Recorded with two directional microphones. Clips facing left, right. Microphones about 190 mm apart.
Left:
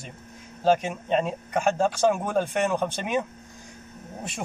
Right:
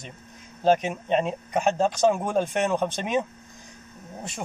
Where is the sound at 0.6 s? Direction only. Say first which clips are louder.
Right 1 dB; 15° right (ahead or behind).